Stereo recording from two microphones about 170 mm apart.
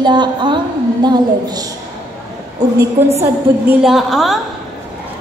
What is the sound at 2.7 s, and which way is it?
Speech, 15° right (ahead or behind).